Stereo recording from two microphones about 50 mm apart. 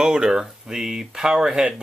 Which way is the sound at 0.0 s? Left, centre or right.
Centre.